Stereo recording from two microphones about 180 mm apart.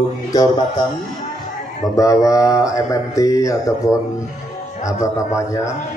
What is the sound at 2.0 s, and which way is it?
A man's voice, 20° left (ahead or behind).